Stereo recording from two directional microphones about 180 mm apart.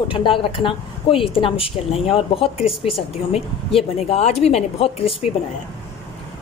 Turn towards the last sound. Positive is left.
turn(degrees=35)  # may be behind; listen again after turning